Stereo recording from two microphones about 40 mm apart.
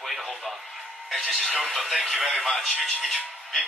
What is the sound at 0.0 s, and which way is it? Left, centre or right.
Radio, centre.